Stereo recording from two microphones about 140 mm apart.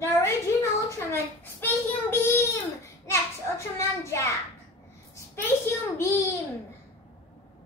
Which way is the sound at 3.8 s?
20° left (ahead or behind).